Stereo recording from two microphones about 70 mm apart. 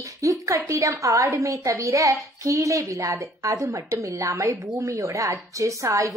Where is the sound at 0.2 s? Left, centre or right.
Right.